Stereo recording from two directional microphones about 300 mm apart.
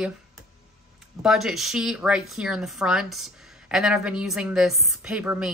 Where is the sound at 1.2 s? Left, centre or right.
Centre.